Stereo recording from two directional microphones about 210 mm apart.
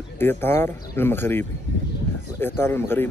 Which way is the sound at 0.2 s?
10° left (ahead or behind).